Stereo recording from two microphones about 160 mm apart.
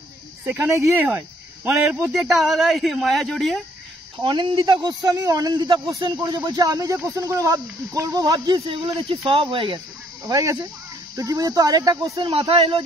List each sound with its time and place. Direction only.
0.5 s speech: 15° right (ahead or behind)
2.1 s speech: centre (ahead or behind)
4.2 s speech: 30° right (ahead or behind)
8.6 s speech: 35° right (ahead or behind)
10.2 s speech: 20° right (ahead or behind)
12.2 s speech: 35° right (ahead or behind)